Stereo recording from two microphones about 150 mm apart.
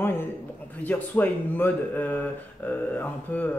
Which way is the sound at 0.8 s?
10° left (ahead or behind).